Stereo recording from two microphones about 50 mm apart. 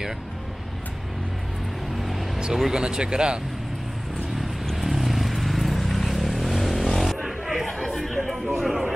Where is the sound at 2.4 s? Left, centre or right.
Centre.